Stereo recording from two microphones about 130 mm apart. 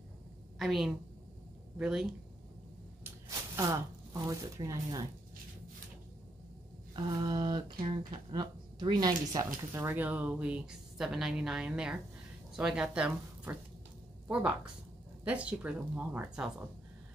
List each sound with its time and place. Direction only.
0.6 s speech: centre (ahead or behind)
3.0 s speech: 25° right (ahead or behind)
7.1 s a woman's voice: 30° right (ahead or behind); by 16.6 s 5° right (ahead or behind)